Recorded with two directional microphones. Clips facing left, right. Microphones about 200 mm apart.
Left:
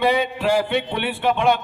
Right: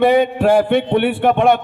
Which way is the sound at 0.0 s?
50° right (ahead or behind).